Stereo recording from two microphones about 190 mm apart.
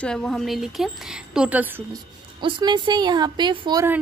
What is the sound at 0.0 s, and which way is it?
A woman's voice, 5° left (ahead or behind).